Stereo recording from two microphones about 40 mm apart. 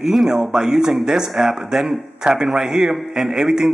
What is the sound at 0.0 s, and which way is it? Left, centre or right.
A man's voice, centre.